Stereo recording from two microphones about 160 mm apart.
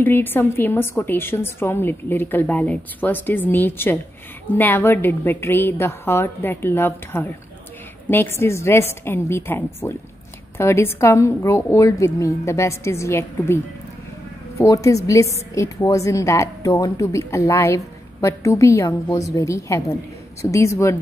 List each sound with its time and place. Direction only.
0.0 s a woman's voice: 10° left (ahead or behind)
8.4 s a woman's voice: 15° left (ahead or behind)
14.6 s a woman's voice: 20° left (ahead or behind)